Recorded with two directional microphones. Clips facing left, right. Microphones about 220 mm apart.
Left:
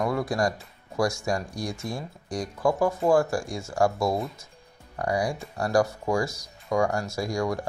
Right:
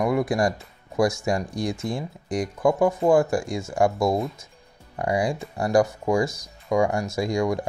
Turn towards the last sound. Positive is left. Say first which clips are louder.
# right 4 dB
turn(degrees=-20)  # may be behind; listen again after turning